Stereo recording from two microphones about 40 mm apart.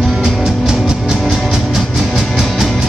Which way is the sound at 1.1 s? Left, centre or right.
Centre.